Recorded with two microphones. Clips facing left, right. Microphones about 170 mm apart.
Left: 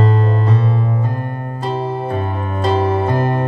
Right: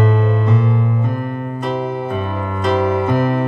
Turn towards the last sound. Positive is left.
turn(degrees=30)  # may be behind; listen again after turning